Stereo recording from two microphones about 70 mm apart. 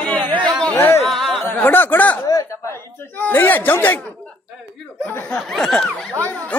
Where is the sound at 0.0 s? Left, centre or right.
Centre.